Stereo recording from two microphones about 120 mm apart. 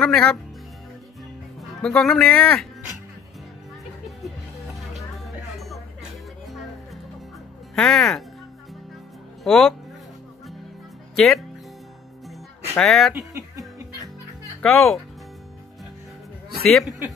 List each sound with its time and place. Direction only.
0.0 s speech: 5° left (ahead or behind)
1.6 s speech: 5° left (ahead or behind)
7.7 s speech: 5° left (ahead or behind)
9.4 s speech: centre (ahead or behind)
11.1 s speech: 5° left (ahead or behind)
12.7 s speech: centre (ahead or behind)
13.1 s music: 25° right (ahead or behind)
14.6 s speech: 15° left (ahead or behind)